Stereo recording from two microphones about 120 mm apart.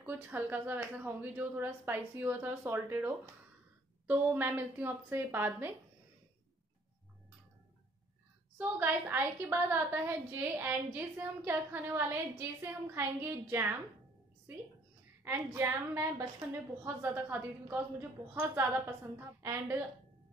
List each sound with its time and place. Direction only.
0.0 s speech: 15° right (ahead or behind)
8.5 s a woman's voice: 15° right (ahead or behind)
15.2 s a woman's voice: 20° right (ahead or behind)